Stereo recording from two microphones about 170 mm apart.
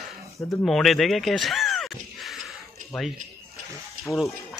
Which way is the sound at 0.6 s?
Centre (ahead or behind).